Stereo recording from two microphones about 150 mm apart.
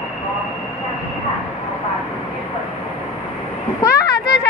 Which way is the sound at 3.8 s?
25° left (ahead or behind).